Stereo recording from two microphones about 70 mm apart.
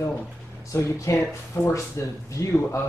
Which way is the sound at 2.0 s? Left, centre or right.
Left.